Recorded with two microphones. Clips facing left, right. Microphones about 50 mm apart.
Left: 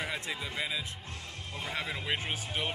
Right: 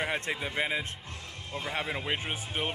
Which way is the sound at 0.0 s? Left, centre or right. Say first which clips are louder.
Right 4 dB; right.